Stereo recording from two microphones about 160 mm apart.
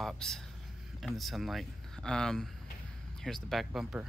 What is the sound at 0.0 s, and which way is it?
Speech, 5° left (ahead or behind).